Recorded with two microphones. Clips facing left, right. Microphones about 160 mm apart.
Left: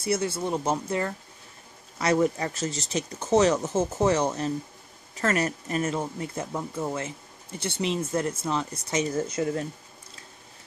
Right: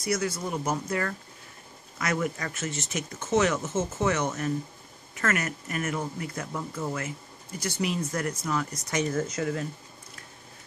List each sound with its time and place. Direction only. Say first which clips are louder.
0.0 s speech: left 2 dB; 30° left (ahead or behind)